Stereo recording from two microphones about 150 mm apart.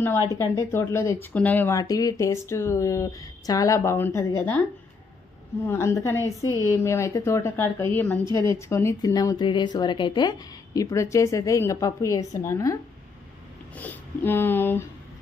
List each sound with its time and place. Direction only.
0.3 s speech: 20° left (ahead or behind)
5.7 s a woman's voice: 15° left (ahead or behind)
8.3 s a woman's voice: 30° right (ahead or behind)
8.5 s speech: 20° left (ahead or behind)
13.7 s a woman's voice: 10° left (ahead or behind)